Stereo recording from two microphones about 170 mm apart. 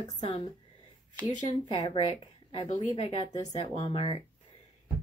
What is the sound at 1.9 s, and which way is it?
A woman's voice, 35° left (ahead or behind).